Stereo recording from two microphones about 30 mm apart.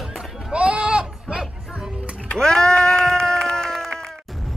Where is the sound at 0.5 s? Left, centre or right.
Right.